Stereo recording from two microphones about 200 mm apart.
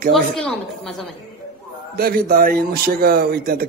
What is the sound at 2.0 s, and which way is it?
A man's voice, 50° right (ahead or behind).